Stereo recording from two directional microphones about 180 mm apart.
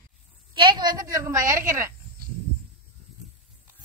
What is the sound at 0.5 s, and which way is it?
A woman's voice, 25° right (ahead or behind).